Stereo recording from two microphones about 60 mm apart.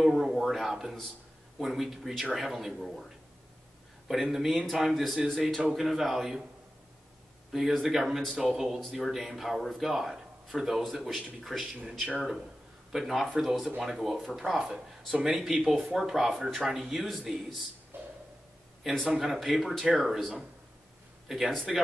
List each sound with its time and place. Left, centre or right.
0.0 s a sound: centre
1.6 s speech: centre
4.1 s speech: centre
7.5 s speech: centre
17.9 s a sound: right
19.0 s speech: centre